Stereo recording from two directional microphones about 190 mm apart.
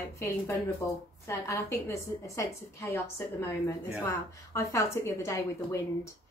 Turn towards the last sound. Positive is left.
turn(degrees=15)  # may be behind; listen again after turning